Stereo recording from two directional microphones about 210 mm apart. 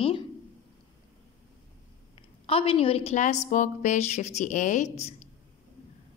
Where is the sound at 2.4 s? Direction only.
25° left (ahead or behind).